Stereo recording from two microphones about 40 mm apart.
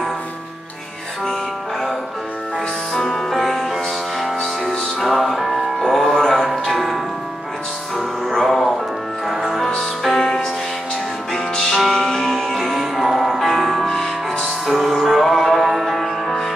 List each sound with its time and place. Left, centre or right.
2.9 s music: centre
8.3 s music: centre
9.8 s music: centre
11.7 s music: centre
13.8 s music: centre
14.4 s music: centre